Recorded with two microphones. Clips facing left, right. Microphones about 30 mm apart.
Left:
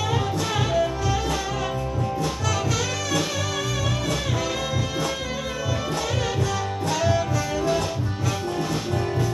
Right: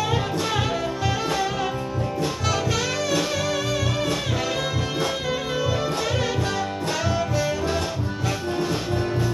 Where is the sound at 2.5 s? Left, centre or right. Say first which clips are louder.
Right 2 dB; right.